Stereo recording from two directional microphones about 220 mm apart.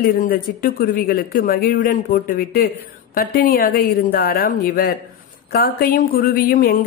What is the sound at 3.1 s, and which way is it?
A woman's voice, 45° left (ahead or behind).